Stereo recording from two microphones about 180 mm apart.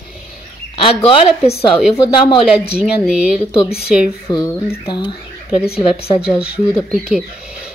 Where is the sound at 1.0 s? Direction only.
35° left (ahead or behind).